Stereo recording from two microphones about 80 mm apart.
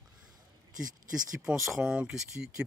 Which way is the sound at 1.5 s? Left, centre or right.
Centre.